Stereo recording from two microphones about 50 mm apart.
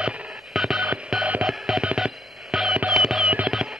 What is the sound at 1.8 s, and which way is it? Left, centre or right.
Telephone dialing, centre.